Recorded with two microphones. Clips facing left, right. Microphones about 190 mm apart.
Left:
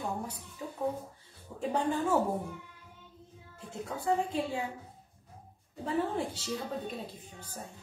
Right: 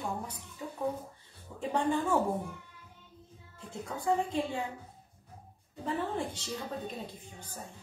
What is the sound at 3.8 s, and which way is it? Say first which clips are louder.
Speech: even; 5° left (ahead or behind).